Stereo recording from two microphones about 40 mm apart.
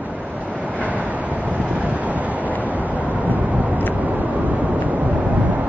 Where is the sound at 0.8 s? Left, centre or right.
Right.